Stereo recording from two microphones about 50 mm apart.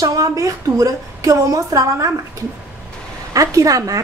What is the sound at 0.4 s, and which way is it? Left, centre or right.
A woman's voice, right.